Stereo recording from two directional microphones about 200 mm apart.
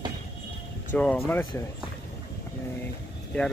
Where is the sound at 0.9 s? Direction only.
10° left (ahead or behind).